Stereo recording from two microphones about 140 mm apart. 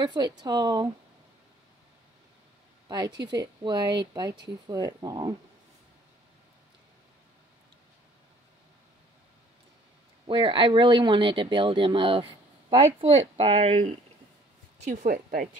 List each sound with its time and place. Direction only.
0.0 s speech: 30° right (ahead or behind)
2.9 s speech: 30° right (ahead or behind)
10.2 s speech: 40° right (ahead or behind)
14.9 s speech: 60° right (ahead or behind)